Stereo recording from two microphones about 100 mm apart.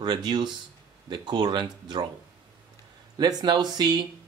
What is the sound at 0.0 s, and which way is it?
Speech, 45° right (ahead or behind).